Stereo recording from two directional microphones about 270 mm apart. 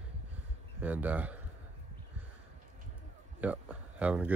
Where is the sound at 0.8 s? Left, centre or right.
Centre.